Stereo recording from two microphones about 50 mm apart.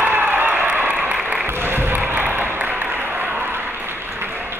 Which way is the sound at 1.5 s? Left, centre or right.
Right.